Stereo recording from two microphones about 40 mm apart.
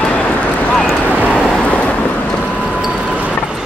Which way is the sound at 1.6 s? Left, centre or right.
Left.